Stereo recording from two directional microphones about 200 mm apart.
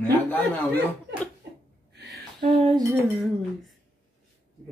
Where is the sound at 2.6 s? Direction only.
20° right (ahead or behind).